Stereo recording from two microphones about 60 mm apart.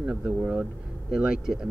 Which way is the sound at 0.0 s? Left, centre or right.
Right.